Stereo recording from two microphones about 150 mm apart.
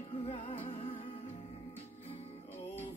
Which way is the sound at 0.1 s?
35° left (ahead or behind).